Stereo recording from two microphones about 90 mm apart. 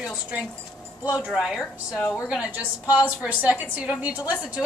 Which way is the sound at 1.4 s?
Centre (ahead or behind).